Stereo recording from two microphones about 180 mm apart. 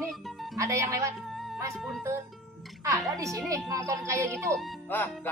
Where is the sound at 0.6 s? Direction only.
15° right (ahead or behind).